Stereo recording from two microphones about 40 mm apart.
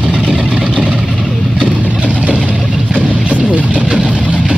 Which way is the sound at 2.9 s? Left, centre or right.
Right.